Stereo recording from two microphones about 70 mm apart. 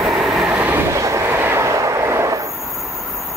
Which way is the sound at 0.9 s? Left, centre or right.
Right.